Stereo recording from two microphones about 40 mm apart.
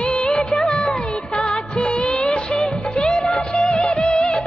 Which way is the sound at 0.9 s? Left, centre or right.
Left.